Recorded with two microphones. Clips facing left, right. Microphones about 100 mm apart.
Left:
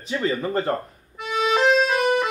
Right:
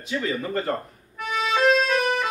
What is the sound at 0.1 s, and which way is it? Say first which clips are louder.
Music: left 3 dB; 25° left (ahead or behind).